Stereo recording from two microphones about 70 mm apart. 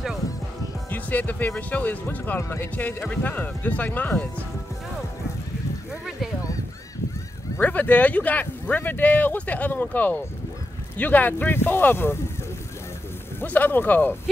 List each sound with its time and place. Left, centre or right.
0.8 s music: left
1.7 s speech: left
7.6 s speech: left
13.4 s speech: left